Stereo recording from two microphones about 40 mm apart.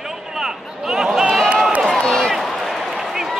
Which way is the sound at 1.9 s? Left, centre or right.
Centre.